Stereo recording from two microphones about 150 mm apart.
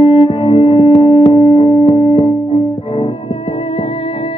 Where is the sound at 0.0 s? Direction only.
35° left (ahead or behind).